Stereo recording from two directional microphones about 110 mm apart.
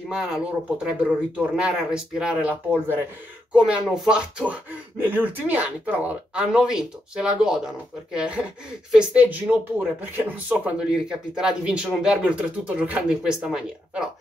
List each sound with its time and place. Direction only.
0.1 s speech: 5° right (ahead or behind)
1.6 s speech: 10° right (ahead or behind)